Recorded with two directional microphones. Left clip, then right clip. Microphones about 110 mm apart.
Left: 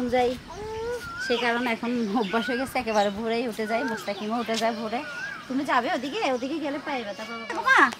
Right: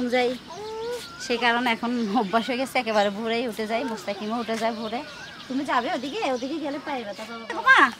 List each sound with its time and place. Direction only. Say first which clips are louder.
0.1 s a child's voice: even; 45° right (ahead or behind); by 4.7 s 25° right (ahead or behind)
5.6 s speech: even; 10° right (ahead or behind)
7.5 s speech: right 2 dB; 20° right (ahead or behind)